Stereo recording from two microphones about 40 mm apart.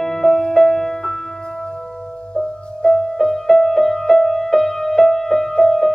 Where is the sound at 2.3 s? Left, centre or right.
Left.